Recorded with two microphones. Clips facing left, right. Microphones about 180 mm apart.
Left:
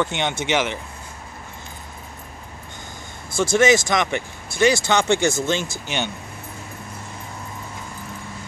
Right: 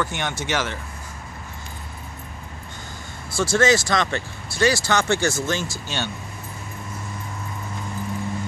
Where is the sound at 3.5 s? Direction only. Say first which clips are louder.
Left 2 dB; 20° left (ahead or behind).